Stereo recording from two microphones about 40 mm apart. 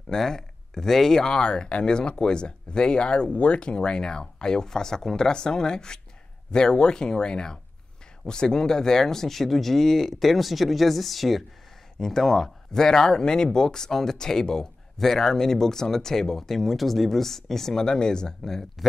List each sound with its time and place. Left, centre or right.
0.1 s speech: centre